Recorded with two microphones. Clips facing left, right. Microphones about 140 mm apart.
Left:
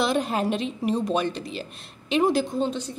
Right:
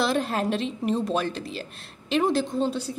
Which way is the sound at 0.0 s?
Centre (ahead or behind).